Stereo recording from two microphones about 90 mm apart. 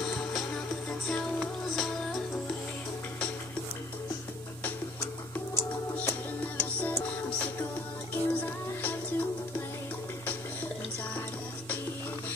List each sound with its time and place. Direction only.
0.0 s music: 5° left (ahead or behind)
5.9 s music: 15° left (ahead or behind)